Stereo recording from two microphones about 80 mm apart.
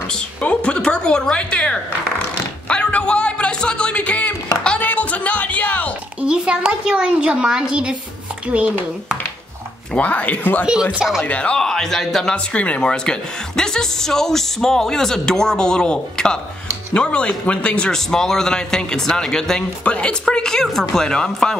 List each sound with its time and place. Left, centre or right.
0.4 s speech: centre
4.6 s music: centre
6.2 s a woman's voice: centre
9.9 s speech: centre
10.7 s a woman's voice: centre
11.2 s speech: centre